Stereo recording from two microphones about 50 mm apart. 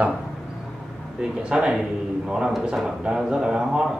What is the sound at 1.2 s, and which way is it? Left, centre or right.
A man's voice, centre.